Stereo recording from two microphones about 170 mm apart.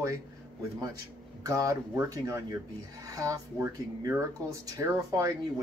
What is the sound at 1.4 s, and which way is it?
Speech, 20° right (ahead or behind).